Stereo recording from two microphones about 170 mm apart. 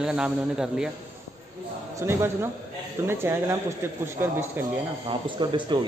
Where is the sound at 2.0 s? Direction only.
15° right (ahead or behind).